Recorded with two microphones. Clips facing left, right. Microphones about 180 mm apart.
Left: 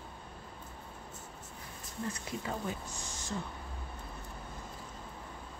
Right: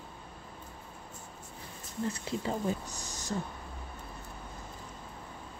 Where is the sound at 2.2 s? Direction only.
35° right (ahead or behind).